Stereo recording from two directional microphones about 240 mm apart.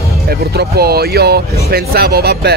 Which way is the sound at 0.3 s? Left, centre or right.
Right.